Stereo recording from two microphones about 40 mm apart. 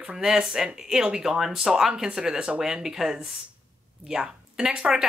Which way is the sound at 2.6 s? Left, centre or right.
Centre.